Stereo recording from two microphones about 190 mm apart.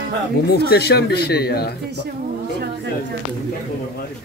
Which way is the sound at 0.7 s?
60° left (ahead or behind).